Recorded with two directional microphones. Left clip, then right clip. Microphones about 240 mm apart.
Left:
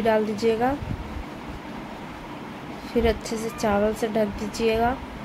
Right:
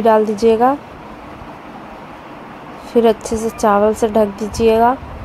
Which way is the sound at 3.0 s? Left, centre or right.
Centre.